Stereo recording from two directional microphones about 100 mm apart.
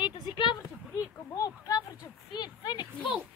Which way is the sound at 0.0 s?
55° left (ahead or behind).